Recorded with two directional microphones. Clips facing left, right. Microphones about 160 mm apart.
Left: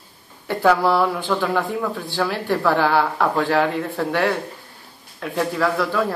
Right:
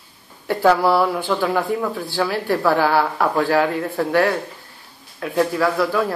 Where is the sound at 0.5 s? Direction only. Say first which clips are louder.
Right 1 dB; 5° right (ahead or behind).